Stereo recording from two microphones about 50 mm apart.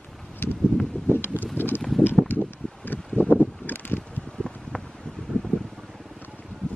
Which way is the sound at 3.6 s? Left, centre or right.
Left.